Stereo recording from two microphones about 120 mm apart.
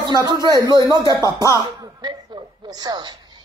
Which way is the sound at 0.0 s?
35° right (ahead or behind).